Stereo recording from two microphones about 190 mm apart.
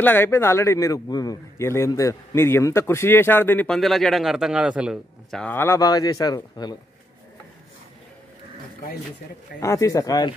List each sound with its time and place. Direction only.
0.0 s a man's voice: 10° left (ahead or behind); by 5.4 s 5° right (ahead or behind)
5.4 s speech: 10° left (ahead or behind)
9.6 s a man's voice: 15° left (ahead or behind)